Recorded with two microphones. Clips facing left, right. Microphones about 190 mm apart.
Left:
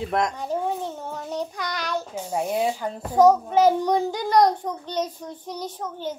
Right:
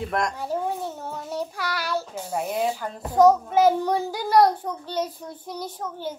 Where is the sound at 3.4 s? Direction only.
5° right (ahead or behind).